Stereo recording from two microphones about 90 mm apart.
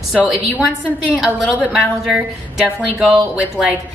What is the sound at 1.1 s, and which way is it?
A woman's voice, 5° right (ahead or behind).